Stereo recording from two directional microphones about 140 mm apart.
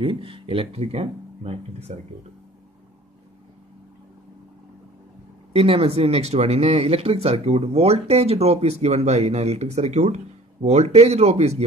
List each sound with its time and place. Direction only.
0.0 s speech: 40° right (ahead or behind)
5.5 s speech: 45° right (ahead or behind)